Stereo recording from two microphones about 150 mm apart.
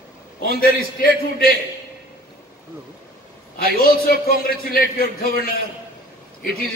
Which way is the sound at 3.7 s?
75° left (ahead or behind).